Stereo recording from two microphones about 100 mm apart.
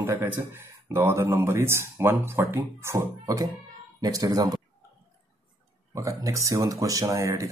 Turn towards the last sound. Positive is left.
turn(degrees=-30)  # may be behind; listen again after turning